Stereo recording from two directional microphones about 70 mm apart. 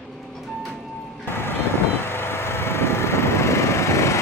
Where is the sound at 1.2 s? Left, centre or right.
Left.